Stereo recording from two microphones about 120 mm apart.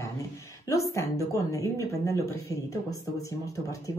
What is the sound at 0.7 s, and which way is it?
Speech, 25° left (ahead or behind).